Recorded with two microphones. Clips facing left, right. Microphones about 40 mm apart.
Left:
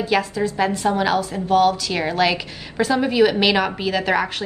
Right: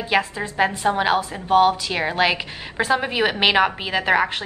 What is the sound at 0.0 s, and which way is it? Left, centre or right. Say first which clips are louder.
A woman's voice: left 2 dB; right.